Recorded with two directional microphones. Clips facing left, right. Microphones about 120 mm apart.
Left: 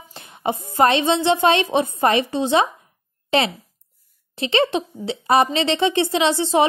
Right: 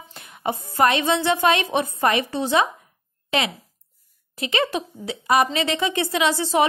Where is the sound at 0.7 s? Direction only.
25° left (ahead or behind).